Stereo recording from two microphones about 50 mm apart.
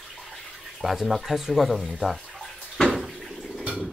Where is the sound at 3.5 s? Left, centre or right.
Right.